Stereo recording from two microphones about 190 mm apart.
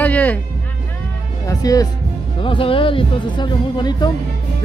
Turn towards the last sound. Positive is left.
turn(degrees=25)  # may be behind; listen again after turning